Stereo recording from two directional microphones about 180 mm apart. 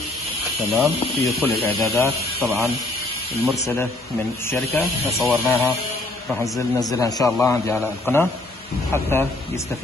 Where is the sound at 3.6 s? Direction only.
10° left (ahead or behind).